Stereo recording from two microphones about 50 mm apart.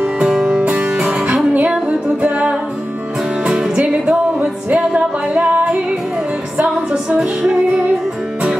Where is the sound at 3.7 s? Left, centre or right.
Right.